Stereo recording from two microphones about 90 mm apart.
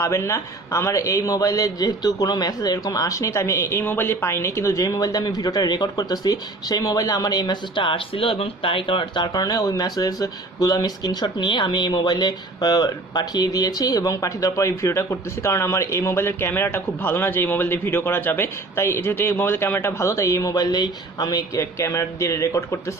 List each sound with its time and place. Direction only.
0.0 s a man's voice: 35° left (ahead or behind)
11.2 s speech: 60° left (ahead or behind)
21.7 s speech: 30° left (ahead or behind)